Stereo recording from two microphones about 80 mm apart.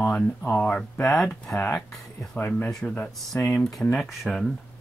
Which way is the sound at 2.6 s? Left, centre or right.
Centre.